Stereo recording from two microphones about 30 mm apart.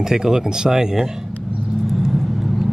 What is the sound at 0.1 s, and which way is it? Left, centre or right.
Speech, centre.